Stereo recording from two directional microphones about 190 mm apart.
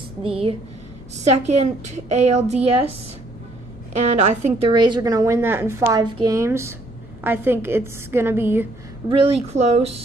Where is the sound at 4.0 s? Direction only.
35° right (ahead or behind); by 8.6 s 10° right (ahead or behind).